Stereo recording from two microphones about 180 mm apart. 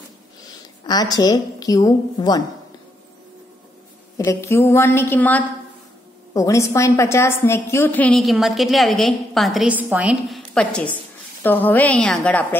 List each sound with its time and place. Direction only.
0.8 s a woman's voice: 20° left (ahead or behind)
4.2 s a woman's voice: 15° left (ahead or behind)